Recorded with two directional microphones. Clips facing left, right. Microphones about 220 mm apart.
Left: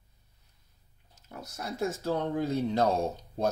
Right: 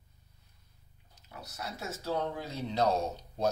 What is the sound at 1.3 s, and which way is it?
Speech, 50° left (ahead or behind).